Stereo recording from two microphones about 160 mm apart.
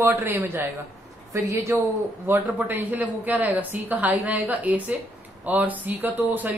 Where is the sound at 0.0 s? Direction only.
15° right (ahead or behind).